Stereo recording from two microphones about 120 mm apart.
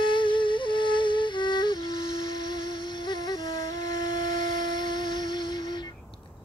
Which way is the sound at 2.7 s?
40° left (ahead or behind).